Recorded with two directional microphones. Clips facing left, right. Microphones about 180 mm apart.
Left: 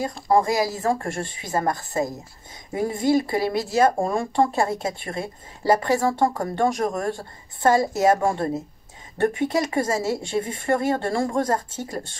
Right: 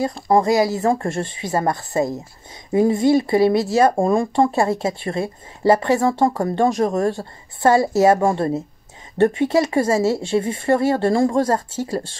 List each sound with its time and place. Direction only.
0.0 s speech: 25° right (ahead or behind)